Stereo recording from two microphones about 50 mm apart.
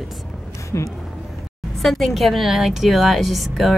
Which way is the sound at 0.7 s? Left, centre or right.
Left.